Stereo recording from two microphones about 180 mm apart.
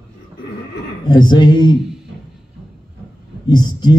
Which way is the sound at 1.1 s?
25° left (ahead or behind).